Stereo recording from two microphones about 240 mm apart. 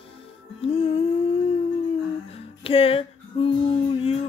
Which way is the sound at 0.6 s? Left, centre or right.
Left.